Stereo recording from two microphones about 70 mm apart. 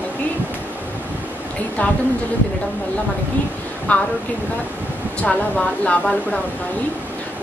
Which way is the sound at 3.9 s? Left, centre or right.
Centre.